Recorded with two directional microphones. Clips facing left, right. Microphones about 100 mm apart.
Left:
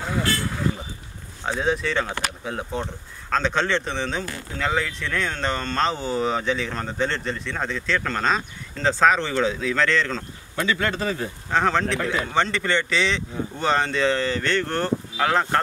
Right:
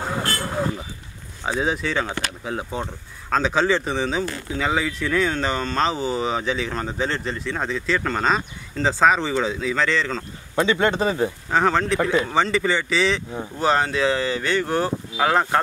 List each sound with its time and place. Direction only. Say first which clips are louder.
0.2 s vehicle: even; 40° right (ahead or behind)
1.4 s speech: even; 5° right (ahead or behind)
10.5 s speech: right 5 dB; 25° right (ahead or behind)
11.5 s speech: right 1 dB; centre (ahead or behind)